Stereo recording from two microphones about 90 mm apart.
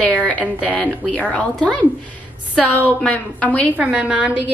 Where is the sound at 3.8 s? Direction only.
15° right (ahead or behind).